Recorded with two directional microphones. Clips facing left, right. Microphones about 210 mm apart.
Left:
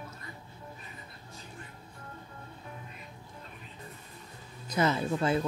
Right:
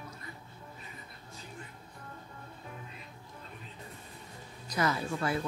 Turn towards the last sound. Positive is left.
turn(degrees=20)  # may be behind; listen again after turning